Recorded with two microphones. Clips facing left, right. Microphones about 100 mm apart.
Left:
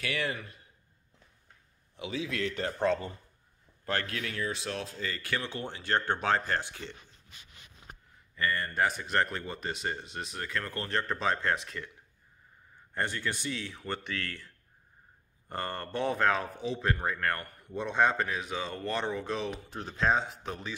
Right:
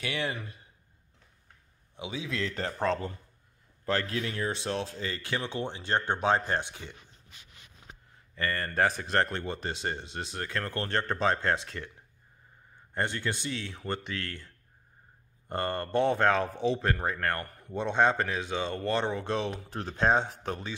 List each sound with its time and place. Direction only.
0.0 s speech: 20° right (ahead or behind)
2.0 s speech: 20° right (ahead or behind)
2.4 s speech: 35° right (ahead or behind); by 7.0 s 15° right (ahead or behind)
8.4 s speech: 35° right (ahead or behind)
12.9 s speech: 25° right (ahead or behind)
18.1 s speech: 40° right (ahead or behind)
18.4 s speech: 30° right (ahead or behind)
19.7 s speech: 70° right (ahead or behind)
20.0 s speech: 35° right (ahead or behind)